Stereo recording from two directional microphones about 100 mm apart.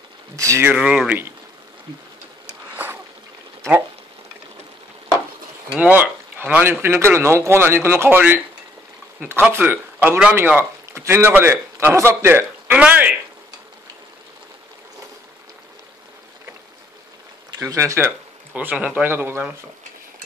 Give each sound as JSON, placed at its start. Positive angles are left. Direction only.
{"t": 0.4, "sound": "speech", "side_deg": -30}
{"t": 0.7, "sound": "speech", "side_deg": -10}
{"t": 2.7, "sound": "a sound", "side_deg": -20}
{"t": 5.8, "sound": "a man's voice", "side_deg": -15}
{"t": 17.6, "sound": "speech", "side_deg": -30}
{"t": 18.5, "sound": "speech", "side_deg": -15}